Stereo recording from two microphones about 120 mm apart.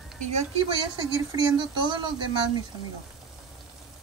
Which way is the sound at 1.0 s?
35° right (ahead or behind).